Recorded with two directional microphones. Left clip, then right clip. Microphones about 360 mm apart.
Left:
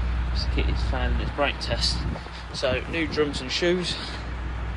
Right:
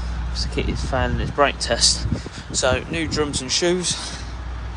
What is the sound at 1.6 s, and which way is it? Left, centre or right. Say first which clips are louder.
Speech: right 8 dB; centre.